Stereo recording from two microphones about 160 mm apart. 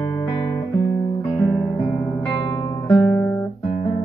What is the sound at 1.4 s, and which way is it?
Guitar, 5° left (ahead or behind).